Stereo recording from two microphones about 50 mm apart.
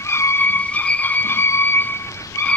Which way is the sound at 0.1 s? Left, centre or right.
Left.